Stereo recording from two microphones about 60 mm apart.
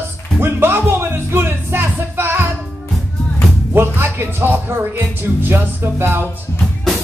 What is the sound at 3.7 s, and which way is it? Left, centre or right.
Speech, right.